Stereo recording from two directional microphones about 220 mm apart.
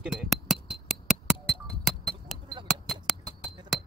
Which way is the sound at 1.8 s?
Centre (ahead or behind).